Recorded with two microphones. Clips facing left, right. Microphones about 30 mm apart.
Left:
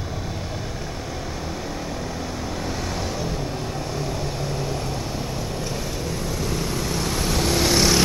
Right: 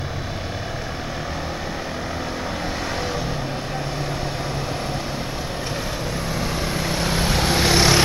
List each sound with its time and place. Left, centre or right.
6.4 s vehicle: right